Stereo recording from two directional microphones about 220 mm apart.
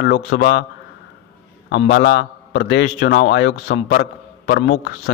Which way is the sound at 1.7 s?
50° left (ahead or behind).